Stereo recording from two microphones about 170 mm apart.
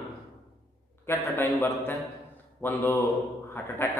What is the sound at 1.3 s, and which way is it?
A man's voice, 15° left (ahead or behind).